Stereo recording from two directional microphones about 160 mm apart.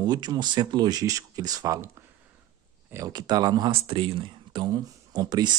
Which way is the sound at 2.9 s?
25° right (ahead or behind).